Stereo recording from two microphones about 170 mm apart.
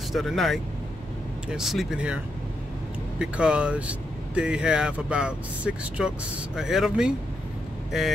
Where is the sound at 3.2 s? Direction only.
5° right (ahead or behind).